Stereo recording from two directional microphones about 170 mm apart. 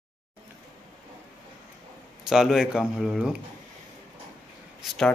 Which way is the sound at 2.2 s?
Centre (ahead or behind).